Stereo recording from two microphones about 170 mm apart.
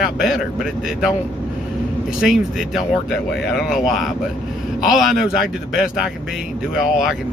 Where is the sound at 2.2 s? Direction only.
Centre (ahead or behind).